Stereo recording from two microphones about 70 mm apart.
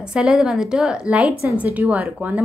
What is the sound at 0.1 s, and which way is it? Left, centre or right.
A woman's voice, centre.